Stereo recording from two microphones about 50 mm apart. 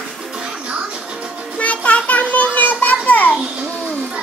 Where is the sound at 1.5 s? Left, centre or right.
Left.